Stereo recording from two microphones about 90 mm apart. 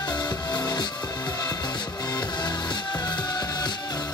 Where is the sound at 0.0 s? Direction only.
50° left (ahead or behind).